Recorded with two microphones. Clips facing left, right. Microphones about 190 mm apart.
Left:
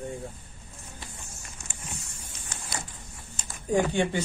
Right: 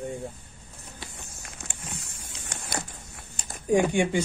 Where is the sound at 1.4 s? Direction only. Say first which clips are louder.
Right 3 dB; 60° right (ahead or behind).